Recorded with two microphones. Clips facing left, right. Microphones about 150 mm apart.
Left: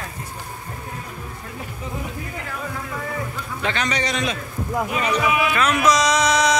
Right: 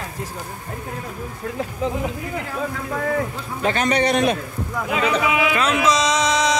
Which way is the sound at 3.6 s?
45° right (ahead or behind).